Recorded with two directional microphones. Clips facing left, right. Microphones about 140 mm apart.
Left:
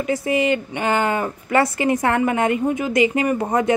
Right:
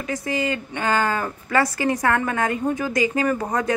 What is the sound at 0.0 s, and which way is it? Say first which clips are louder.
A woman's voice: left 5 dB; 25° left (ahead or behind).